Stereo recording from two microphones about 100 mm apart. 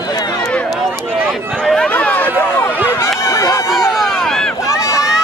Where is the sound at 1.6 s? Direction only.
5° left (ahead or behind).